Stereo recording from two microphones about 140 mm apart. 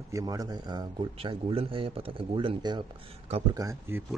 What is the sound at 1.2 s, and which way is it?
A man's voice, 40° right (ahead or behind).